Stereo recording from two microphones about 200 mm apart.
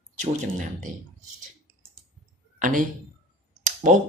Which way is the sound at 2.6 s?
40° right (ahead or behind).